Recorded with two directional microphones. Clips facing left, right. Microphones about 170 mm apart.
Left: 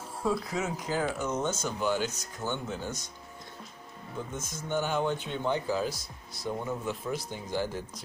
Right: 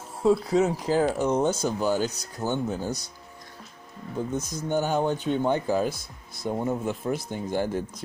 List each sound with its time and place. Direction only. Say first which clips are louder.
0.2 s speech: right 9 dB; 30° right (ahead or behind)
4.4 s speech: right 3 dB; 40° right (ahead or behind); by 8.0 s 55° right (ahead or behind)